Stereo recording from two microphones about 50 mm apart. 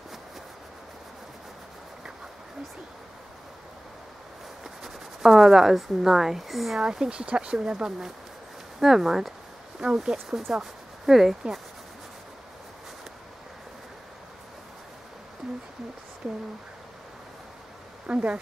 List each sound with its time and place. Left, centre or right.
4.8 s speech: centre
6.8 s speech: centre
18.0 s speech: right